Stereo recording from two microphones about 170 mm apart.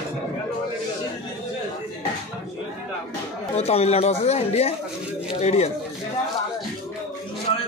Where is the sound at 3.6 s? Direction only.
40° left (ahead or behind).